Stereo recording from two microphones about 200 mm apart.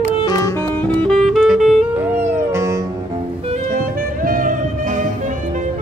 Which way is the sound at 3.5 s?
40° right (ahead or behind).